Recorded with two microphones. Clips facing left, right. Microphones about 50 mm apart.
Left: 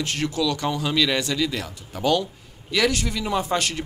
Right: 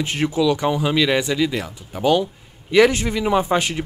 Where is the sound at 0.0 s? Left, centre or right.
Centre.